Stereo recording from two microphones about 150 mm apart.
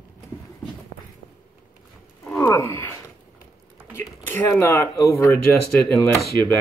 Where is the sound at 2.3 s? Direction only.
15° left (ahead or behind).